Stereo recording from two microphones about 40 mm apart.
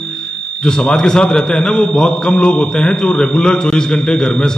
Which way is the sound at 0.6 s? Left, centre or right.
Centre.